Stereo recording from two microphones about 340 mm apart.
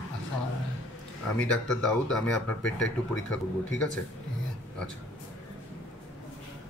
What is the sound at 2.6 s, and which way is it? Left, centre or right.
Speech, left.